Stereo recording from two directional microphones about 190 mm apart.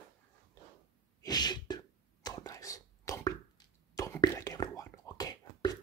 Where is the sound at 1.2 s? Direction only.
20° left (ahead or behind).